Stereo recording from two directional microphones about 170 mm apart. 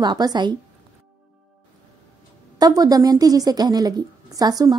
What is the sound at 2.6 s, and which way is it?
Speech, 20° right (ahead or behind).